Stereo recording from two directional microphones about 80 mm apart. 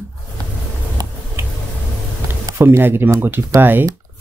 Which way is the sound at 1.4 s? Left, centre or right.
Right.